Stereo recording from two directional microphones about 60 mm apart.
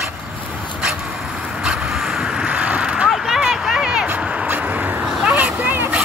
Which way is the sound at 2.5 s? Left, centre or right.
Right.